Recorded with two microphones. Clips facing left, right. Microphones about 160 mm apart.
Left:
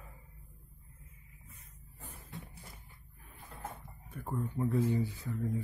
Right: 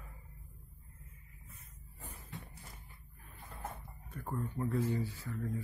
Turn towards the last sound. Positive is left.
turn(degrees=20)  # may be behind; listen again after turning